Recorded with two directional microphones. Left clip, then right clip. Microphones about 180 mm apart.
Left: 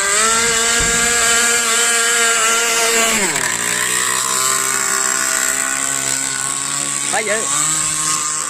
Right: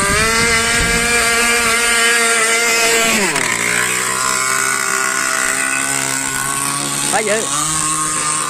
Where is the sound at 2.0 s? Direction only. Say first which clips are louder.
Right 2 dB; 20° right (ahead or behind).